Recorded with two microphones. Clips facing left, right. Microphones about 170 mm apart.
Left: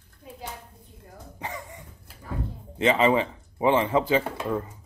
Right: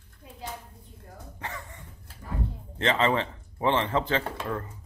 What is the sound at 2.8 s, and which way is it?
Speech, 10° left (ahead or behind).